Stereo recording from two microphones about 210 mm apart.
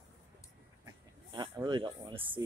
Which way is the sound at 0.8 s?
20° right (ahead or behind).